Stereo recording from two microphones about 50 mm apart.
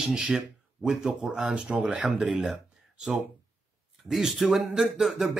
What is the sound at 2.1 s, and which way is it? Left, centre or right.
Speech, centre.